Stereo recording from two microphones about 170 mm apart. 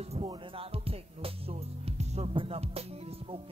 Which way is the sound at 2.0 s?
35° right (ahead or behind).